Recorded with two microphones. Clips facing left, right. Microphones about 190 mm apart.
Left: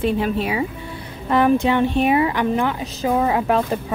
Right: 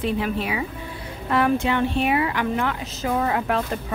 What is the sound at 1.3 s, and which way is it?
Speech, 20° left (ahead or behind).